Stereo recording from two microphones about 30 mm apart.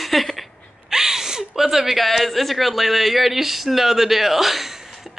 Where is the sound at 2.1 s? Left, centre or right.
Centre.